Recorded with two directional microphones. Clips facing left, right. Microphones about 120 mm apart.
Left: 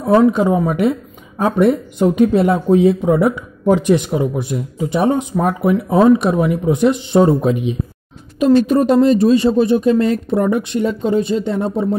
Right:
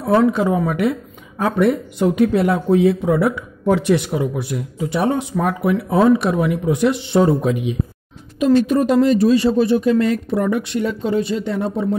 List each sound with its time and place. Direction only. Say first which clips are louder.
0.0 s speech: left 3 dB; 20° left (ahead or behind)